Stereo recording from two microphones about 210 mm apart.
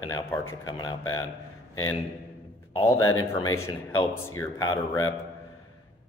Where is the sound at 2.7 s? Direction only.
15° left (ahead or behind).